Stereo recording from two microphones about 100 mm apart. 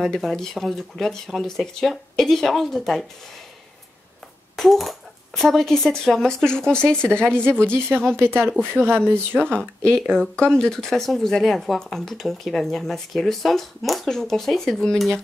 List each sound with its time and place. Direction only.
0.0 s speech: 5° left (ahead or behind)
4.6 s speech: centre (ahead or behind)
8.2 s speech: 20° right (ahead or behind)
9.9 s speech: 5° left (ahead or behind)